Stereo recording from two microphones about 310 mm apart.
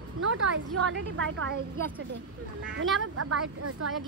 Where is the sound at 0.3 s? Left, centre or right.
Right.